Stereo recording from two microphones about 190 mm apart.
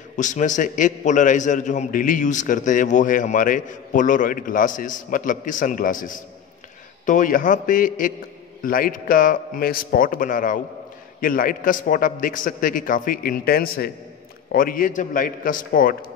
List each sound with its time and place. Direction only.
0.1 s a man's voice: 40° left (ahead or behind)